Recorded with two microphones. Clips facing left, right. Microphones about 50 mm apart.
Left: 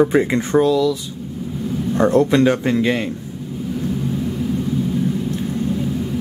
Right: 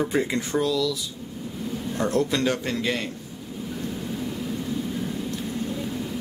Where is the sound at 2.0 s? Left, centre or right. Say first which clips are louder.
Left 9 dB; left.